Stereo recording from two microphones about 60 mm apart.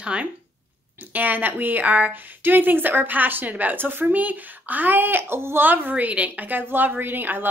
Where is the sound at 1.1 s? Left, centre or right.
Right.